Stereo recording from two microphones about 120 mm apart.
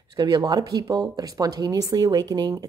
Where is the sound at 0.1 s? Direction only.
30° right (ahead or behind).